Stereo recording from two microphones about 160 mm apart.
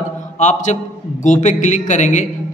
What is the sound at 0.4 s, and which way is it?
A man's voice, 50° left (ahead or behind).